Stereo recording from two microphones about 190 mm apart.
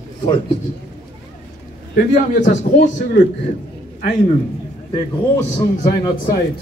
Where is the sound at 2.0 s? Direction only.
40° left (ahead or behind).